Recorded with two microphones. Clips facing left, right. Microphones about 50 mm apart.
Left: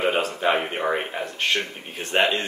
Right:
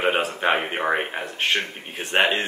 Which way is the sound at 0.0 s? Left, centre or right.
Centre.